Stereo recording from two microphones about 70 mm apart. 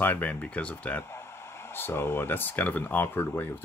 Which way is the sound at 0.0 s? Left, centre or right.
Left.